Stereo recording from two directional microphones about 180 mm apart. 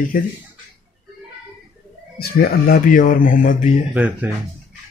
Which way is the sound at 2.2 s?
55° left (ahead or behind).